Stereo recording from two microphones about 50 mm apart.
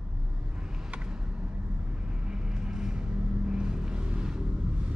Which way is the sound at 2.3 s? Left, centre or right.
Centre.